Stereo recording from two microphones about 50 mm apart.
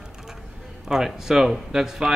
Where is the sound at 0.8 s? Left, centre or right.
Centre.